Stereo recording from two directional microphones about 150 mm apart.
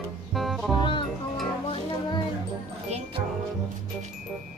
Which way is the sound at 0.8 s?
35° left (ahead or behind).